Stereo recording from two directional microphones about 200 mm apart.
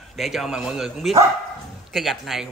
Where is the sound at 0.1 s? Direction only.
Centre (ahead or behind).